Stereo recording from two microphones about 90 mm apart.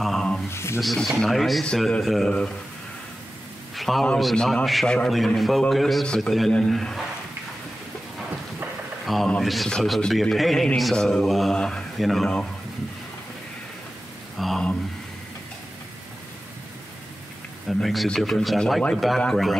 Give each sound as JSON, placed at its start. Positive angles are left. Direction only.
{"t": 0.0, "sound": "a sound", "side_deg": 5}
{"t": 0.5, "sound": "speech", "side_deg": 30}
{"t": 0.7, "sound": "a man's voice", "side_deg": 0}
{"t": 3.7, "sound": "a man's voice", "side_deg": 0}
{"t": 9.0, "sound": "a man's voice", "side_deg": 0}
{"t": 14.4, "sound": "a sound", "side_deg": 5}
{"t": 17.6, "sound": "a man's voice", "side_deg": 0}